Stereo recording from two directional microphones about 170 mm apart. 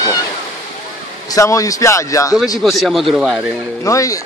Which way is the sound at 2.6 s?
Centre (ahead or behind).